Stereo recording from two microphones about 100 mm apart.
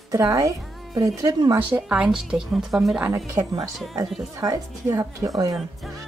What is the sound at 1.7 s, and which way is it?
Speech, 10° right (ahead or behind).